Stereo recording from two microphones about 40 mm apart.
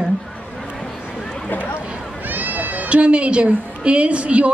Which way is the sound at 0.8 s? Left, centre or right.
Centre.